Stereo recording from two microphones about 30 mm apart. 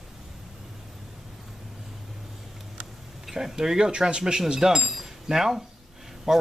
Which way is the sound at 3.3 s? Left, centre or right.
Centre.